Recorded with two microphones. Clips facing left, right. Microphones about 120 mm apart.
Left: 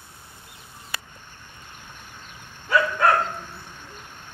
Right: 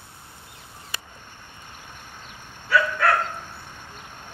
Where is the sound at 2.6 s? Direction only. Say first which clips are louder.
Left 1 dB; 20° left (ahead or behind).